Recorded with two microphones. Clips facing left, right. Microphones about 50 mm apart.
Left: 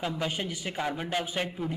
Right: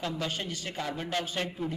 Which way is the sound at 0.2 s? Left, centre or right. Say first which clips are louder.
Left 2 dB; centre.